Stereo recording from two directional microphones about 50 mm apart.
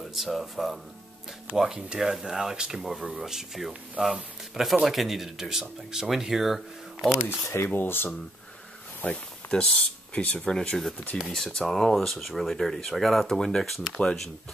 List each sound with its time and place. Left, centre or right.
0.0 s speech: centre
1.6 s speech: centre
2.8 s speech: centre
7.2 s speech: left
7.7 s speech: left
9.0 s speech: left
10.5 s speech: centre